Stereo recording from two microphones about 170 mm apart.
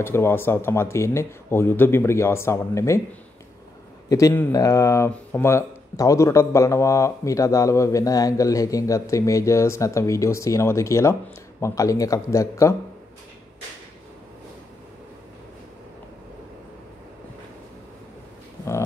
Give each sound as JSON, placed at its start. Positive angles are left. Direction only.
{"t": 0.0, "sound": "speech", "side_deg": 15}
{"t": 4.1, "sound": "speech", "side_deg": 15}